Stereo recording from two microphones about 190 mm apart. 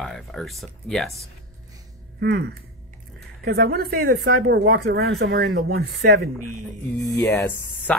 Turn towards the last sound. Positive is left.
turn(degrees=10)  # may be behind; listen again after turning